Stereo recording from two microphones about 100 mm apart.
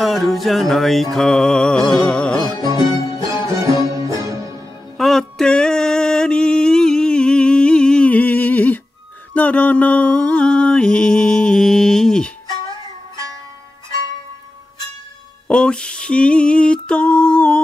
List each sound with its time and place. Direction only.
0.0 s music: centre (ahead or behind)
2.7 s music: 50° left (ahead or behind)
3.3 s music: 30° right (ahead or behind)
4.9 s mantra: 5° left (ahead or behind)
9.3 s music: 15° left (ahead or behind)
15.4 s a sound: 10° left (ahead or behind)